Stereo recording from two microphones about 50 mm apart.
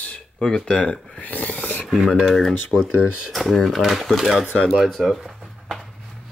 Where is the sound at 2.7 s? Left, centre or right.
Centre.